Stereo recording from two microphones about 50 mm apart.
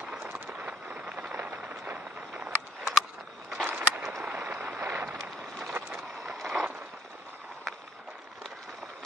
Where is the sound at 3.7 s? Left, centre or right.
Right.